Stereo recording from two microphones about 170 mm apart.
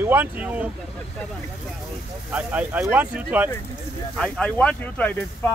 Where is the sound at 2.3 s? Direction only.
10° right (ahead or behind).